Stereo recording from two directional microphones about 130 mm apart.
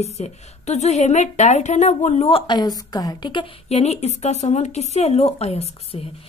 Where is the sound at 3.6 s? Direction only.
55° left (ahead or behind).